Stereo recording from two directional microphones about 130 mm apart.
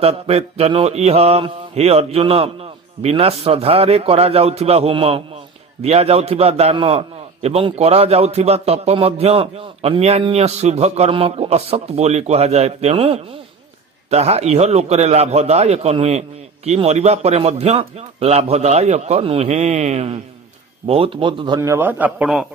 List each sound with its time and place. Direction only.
0.0 s a man's voice: 50° right (ahead or behind)
20.8 s speech: 45° right (ahead or behind)
21.5 s a man's voice: 20° right (ahead or behind)